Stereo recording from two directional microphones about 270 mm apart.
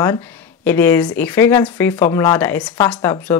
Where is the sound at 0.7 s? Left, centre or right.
Centre.